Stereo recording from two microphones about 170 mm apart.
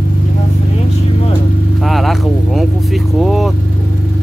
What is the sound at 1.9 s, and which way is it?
Vehicle, centre (ahead or behind).